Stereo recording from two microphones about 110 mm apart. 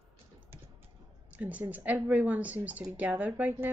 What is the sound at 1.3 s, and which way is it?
Speech, 15° right (ahead or behind).